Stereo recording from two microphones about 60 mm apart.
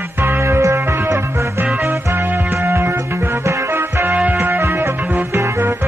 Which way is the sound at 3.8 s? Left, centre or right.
Right.